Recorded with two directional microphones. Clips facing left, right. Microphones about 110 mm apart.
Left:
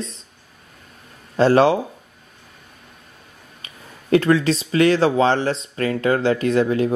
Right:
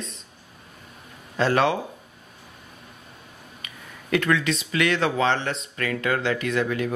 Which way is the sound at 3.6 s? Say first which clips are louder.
Left 8 dB; 30° left (ahead or behind).